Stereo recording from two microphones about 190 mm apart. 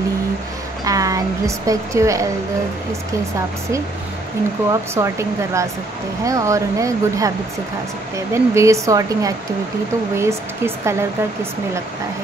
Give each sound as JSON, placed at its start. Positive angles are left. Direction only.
{"t": 0.8, "sound": "a woman's voice", "side_deg": -20}
{"t": 4.9, "sound": "speech", "side_deg": -15}